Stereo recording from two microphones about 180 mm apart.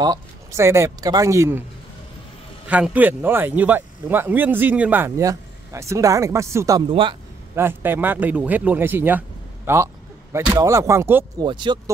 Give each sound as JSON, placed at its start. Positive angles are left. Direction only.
{"t": 0.0, "sound": "speech", "side_deg": -20}
{"t": 2.7, "sound": "speech", "side_deg": -10}
{"t": 6.9, "sound": "speech", "side_deg": -30}
{"t": 7.5, "sound": "speech", "side_deg": -10}
{"t": 11.4, "sound": "speech", "side_deg": -25}